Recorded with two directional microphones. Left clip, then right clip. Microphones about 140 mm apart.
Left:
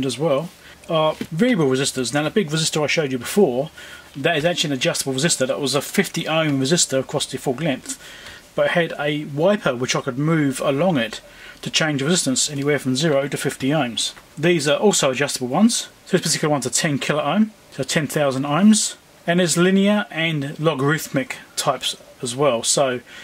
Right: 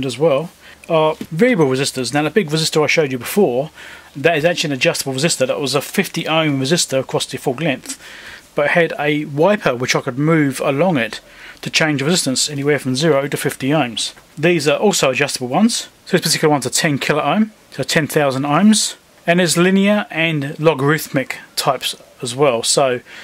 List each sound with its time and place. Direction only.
0.0 s speech: 20° right (ahead or behind)